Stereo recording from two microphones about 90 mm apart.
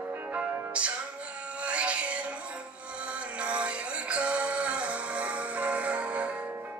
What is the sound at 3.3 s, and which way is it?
Music, 15° right (ahead or behind).